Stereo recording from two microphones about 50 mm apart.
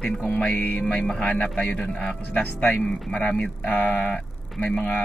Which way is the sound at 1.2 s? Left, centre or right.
Left.